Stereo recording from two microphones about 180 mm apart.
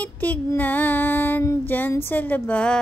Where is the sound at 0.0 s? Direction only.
10° left (ahead or behind).